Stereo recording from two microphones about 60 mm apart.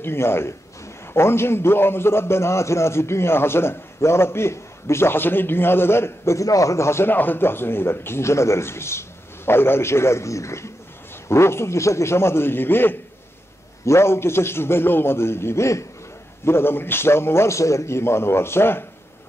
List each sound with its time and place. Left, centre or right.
0.0 s a man's voice: left
7.1 s a man's voice: left
13.8 s a man's voice: left
16.4 s a man's voice: left